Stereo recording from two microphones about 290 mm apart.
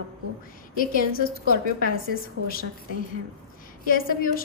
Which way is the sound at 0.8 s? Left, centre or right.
Left.